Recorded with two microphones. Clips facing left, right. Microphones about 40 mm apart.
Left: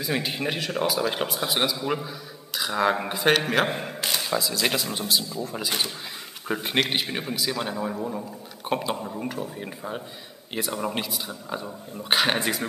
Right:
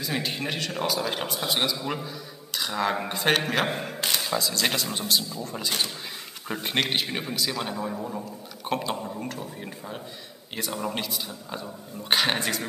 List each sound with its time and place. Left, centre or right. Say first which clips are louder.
0.0 s a man's voice: left 2 dB; centre